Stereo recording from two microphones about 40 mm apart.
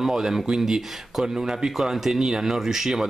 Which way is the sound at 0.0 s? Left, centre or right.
Centre.